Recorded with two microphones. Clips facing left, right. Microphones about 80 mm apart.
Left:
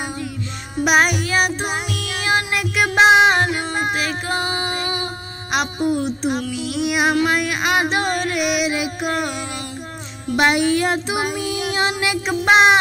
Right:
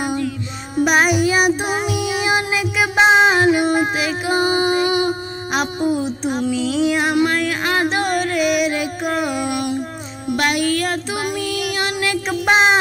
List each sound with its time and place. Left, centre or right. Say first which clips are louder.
0.8 s music: right 1 dB; centre
3.4 s a sound: right 8 dB; centre
3.8 s child singing: right 2 dB; centre
5.5 s music: right 1 dB; centre
10.3 s music: left 2 dB; left
12.4 s music: left 2 dB; centre